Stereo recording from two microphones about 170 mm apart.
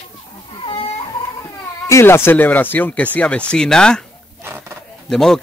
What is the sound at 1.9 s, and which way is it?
Speech, 15° left (ahead or behind).